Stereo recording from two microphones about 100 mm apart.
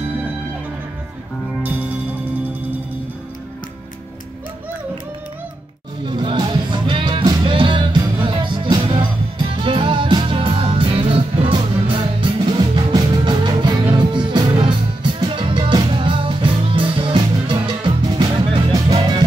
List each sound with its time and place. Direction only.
6.0 s music: 50° right (ahead or behind)
9.5 s music: 60° right (ahead or behind)
11.5 s music: 50° right (ahead or behind)
18.7 s music: 40° right (ahead or behind)